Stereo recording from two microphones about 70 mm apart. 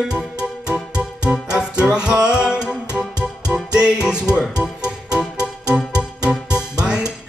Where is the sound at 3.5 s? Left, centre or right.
Centre.